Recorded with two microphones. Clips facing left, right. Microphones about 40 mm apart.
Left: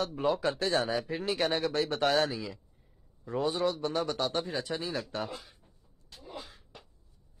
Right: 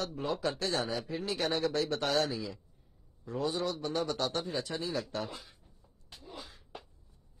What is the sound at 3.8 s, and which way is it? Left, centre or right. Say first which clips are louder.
Speech: left 2 dB; centre.